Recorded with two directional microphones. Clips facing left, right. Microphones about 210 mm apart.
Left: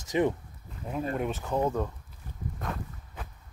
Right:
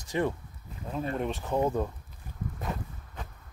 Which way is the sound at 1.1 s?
5° left (ahead or behind).